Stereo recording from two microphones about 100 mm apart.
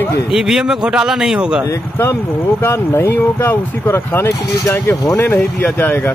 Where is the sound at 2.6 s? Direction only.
25° left (ahead or behind).